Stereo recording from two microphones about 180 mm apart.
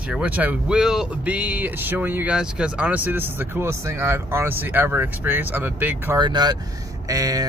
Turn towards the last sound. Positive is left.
turn(degrees=-20)  # may be behind; listen again after turning